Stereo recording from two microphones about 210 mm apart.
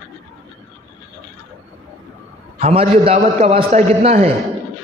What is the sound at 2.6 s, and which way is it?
A man's voice, 30° right (ahead or behind).